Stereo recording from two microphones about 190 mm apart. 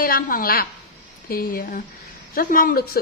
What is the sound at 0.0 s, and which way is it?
A woman's voice, 50° left (ahead or behind).